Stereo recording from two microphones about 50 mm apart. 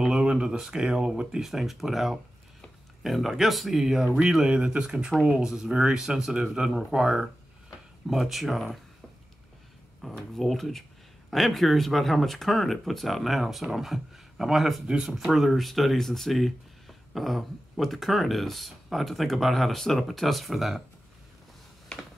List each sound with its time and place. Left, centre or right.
0.1 s speech: centre
1.4 s speech: centre
4.5 s speech: centre
10.0 s speech: centre
14.9 s speech: centre
15.1 s speech: centre